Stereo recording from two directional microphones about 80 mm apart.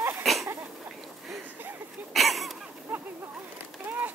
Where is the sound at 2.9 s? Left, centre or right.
Right.